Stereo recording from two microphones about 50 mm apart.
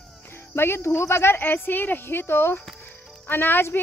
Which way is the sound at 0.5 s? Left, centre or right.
Left.